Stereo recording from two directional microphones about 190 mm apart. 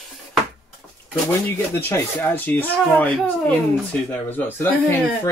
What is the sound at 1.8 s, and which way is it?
Speech, 15° left (ahead or behind).